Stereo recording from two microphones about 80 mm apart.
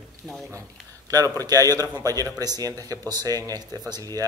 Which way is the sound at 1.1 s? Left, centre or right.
Right.